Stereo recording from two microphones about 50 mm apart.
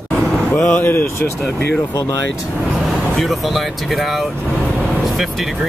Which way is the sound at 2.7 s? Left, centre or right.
Centre.